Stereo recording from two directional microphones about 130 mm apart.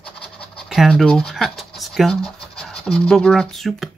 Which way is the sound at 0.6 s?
Centre (ahead or behind).